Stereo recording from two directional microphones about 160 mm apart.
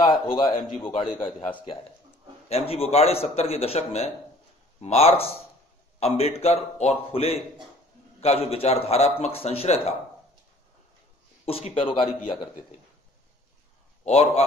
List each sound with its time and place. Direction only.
0.0 s a man's voice: 25° left (ahead or behind)
2.5 s a man's voice: 40° left (ahead or behind)
11.4 s a man's voice: 35° left (ahead or behind)
14.0 s a man's voice: 45° left (ahead or behind)